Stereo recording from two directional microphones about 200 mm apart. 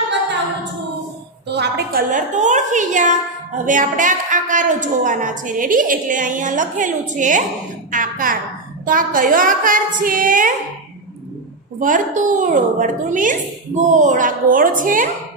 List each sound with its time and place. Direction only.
1.5 s a woman's voice: 50° right (ahead or behind)
11.8 s a woman's voice: 40° right (ahead or behind)